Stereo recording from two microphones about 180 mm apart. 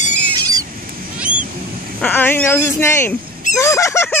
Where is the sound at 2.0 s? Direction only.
10° left (ahead or behind).